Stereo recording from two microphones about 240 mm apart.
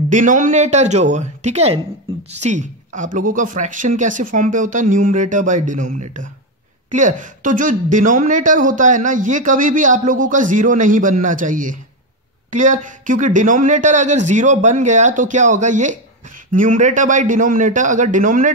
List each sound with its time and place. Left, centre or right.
0.1 s a woman's voice: right
2.1 s a sound: right
2.4 s speech: right
6.9 s speech: right